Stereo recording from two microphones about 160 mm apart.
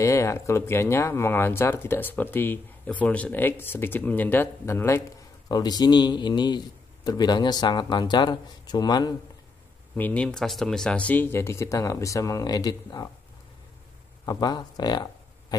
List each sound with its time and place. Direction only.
0.0 s speech: 20° left (ahead or behind)
9.9 s speech: 10° left (ahead or behind)
14.2 s speech: 25° left (ahead or behind)